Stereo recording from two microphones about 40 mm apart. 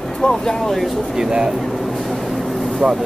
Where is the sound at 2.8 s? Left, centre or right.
Centre.